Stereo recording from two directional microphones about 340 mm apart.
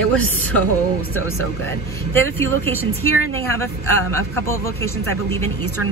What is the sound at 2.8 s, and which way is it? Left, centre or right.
Speech, right.